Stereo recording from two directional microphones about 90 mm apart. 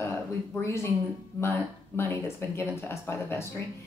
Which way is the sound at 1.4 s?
25° left (ahead or behind).